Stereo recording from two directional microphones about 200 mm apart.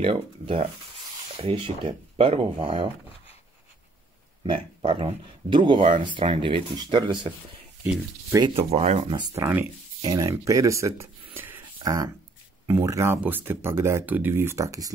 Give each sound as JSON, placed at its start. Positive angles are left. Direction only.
{"t": 0.0, "sound": "speech", "side_deg": -25}
{"t": 4.5, "sound": "speech", "side_deg": -25}
{"t": 8.5, "sound": "speech", "side_deg": -30}
{"t": 9.2, "sound": "speech", "side_deg": -15}
{"t": 11.3, "sound": "a sound", "side_deg": -10}
{"t": 12.6, "sound": "speech", "side_deg": -15}